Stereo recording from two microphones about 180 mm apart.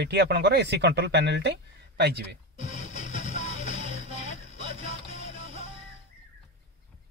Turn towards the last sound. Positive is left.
turn(degrees=40)  # may be behind; listen again after turning